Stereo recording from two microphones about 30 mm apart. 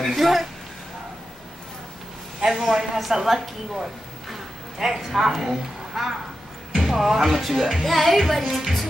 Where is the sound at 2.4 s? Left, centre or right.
Centre.